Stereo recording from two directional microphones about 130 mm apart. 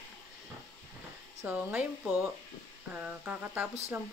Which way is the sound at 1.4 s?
10° right (ahead or behind).